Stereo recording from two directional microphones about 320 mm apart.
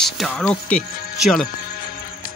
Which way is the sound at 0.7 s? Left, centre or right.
Left.